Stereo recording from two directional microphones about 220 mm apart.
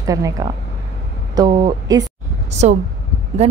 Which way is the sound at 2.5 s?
30° right (ahead or behind).